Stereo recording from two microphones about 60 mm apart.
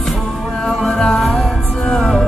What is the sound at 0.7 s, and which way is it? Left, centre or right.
Music, centre.